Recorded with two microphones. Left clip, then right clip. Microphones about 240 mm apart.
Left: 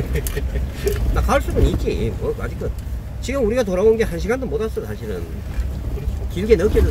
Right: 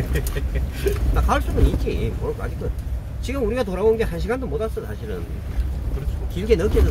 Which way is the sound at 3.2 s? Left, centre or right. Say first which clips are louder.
Left 4 dB; centre.